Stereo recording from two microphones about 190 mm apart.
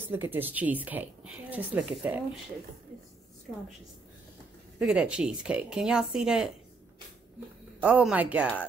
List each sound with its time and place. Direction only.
0.1 s speech: 10° right (ahead or behind)
4.7 s speech: 5° right (ahead or behind)
7.8 s speech: 5° right (ahead or behind)